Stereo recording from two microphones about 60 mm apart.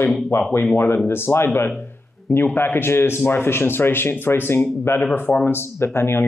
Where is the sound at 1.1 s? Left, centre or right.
Left.